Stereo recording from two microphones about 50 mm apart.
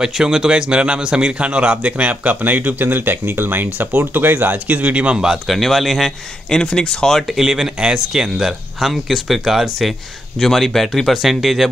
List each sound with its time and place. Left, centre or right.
0.0 s a man's voice: centre; by 5.1 s right
5.1 s speech: centre
5.5 s speech: centre
6.6 s speech: centre
7.3 s speech: centre